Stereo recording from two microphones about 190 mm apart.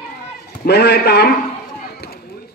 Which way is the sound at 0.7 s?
60° left (ahead or behind).